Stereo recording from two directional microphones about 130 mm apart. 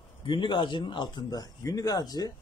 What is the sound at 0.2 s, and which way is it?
A man's voice, 40° left (ahead or behind).